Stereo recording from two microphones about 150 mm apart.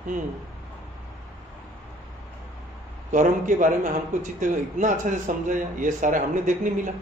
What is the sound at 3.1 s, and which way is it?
Speech, 60° right (ahead or behind).